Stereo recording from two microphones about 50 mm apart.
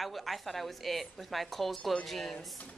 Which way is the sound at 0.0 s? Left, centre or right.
Centre.